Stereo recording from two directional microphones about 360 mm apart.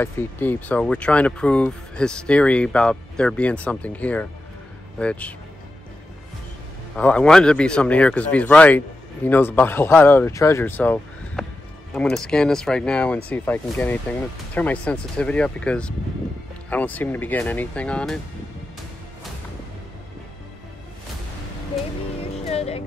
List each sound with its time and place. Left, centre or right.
0.0 s speech: centre
7.0 s speech: centre
22.4 s music: centre